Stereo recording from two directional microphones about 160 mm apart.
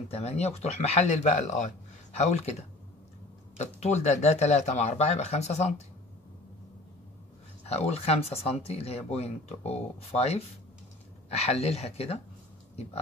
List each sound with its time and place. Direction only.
0.1 s speech: 40° left (ahead or behind)
7.6 s speech: 40° left (ahead or behind)